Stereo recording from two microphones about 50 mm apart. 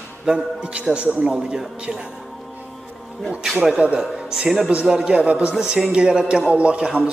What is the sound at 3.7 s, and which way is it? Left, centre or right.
A man's voice, right.